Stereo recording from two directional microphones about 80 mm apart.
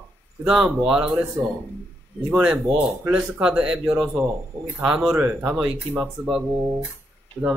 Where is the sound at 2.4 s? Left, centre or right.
Centre.